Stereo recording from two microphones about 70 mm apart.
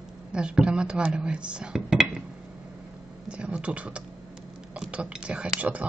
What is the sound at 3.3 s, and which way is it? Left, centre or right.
Speech, centre.